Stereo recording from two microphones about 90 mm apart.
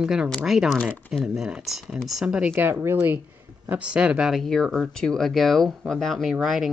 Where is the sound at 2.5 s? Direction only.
25° right (ahead or behind).